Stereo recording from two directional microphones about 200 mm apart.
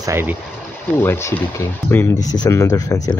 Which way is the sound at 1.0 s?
10° left (ahead or behind).